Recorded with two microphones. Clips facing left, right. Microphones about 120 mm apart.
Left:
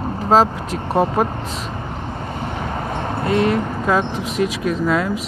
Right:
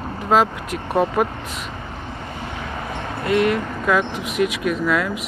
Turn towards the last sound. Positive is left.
turn(degrees=30)  # may be behind; listen again after turning